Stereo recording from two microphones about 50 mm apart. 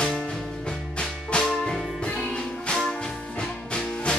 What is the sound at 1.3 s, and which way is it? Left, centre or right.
Music, centre.